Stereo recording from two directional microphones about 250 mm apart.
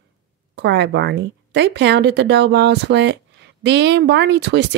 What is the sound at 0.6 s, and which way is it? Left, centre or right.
A woman's voice, right.